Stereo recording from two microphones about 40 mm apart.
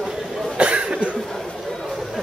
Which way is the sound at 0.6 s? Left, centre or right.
Right.